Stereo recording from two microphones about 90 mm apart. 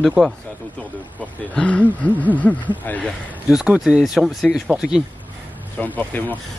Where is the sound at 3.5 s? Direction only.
10° right (ahead or behind).